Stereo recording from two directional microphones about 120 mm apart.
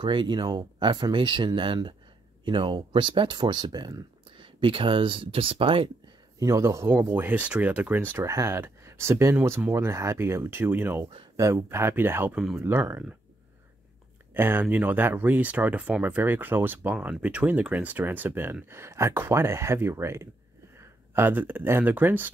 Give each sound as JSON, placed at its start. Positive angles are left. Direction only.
{"t": 0.0, "sound": "speech", "side_deg": -40}
{"t": 6.4, "sound": "speech", "side_deg": -25}
{"t": 8.2, "sound": "speech", "side_deg": -25}
{"t": 14.3, "sound": "speech", "side_deg": -20}